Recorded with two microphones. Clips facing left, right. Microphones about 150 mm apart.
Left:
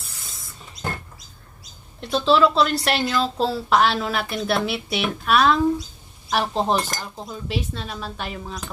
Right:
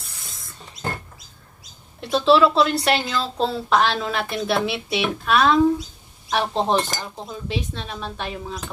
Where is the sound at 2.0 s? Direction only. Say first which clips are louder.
Right 2 dB; centre (ahead or behind).